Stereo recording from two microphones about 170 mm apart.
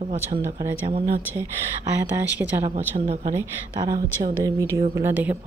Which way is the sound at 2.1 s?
10° right (ahead or behind).